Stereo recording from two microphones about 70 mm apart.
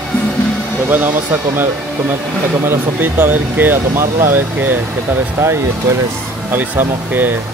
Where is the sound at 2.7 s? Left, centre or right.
Right.